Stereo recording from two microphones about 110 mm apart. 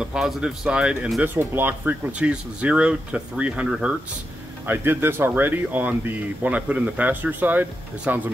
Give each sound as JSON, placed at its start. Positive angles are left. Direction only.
{"t": 0.0, "sound": "speech", "side_deg": -5}
{"t": 1.2, "sound": "speech", "side_deg": -20}
{"t": 4.6, "sound": "speech", "side_deg": -20}